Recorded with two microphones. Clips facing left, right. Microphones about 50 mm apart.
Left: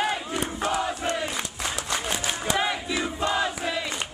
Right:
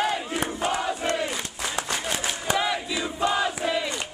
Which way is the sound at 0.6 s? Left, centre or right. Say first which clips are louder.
Even; right.